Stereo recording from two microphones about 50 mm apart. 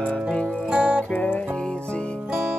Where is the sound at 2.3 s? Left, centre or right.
Centre.